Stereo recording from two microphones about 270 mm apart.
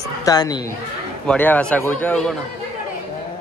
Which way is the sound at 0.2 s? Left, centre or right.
Centre.